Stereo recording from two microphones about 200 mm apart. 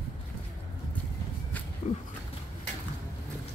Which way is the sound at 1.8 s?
35° left (ahead or behind).